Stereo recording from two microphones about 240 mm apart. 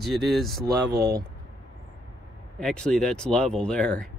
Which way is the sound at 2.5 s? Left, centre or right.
Centre.